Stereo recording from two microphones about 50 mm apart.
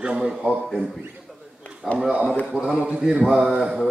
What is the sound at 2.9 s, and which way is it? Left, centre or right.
Speech, centre.